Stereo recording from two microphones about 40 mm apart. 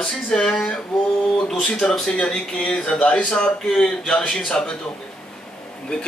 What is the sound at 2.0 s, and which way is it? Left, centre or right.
A man's voice, left.